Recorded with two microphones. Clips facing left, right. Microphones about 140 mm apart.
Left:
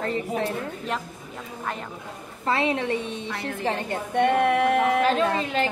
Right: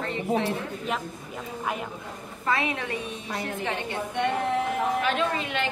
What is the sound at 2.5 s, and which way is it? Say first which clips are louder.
A woman's voice: left 4 dB; 30° left (ahead or behind).